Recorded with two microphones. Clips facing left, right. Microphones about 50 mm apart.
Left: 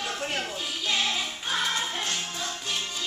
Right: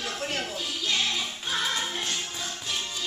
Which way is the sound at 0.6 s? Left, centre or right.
Centre.